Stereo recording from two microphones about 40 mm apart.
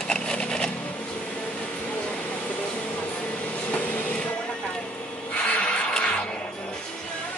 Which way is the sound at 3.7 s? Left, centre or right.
Left.